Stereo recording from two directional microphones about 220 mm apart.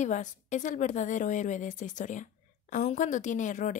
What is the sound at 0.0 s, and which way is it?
A woman's voice, 35° left (ahead or behind).